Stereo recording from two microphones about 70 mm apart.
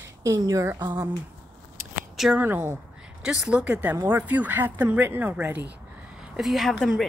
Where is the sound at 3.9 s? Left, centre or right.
Right.